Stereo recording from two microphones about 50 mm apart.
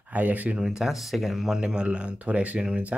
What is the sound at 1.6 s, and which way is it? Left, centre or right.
Speech, centre.